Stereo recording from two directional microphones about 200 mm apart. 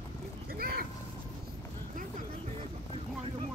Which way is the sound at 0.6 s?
45° right (ahead or behind).